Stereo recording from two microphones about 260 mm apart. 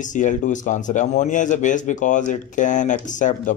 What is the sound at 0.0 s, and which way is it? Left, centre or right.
A man's voice, left.